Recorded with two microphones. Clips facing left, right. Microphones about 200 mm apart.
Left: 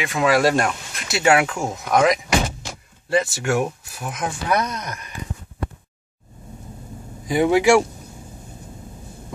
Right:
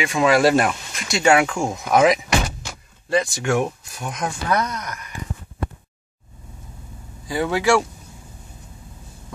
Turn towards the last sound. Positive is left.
turn(degrees=15)  # may be behind; listen again after turning